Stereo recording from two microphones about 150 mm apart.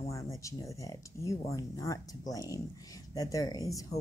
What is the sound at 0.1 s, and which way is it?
Speech, 20° left (ahead or behind).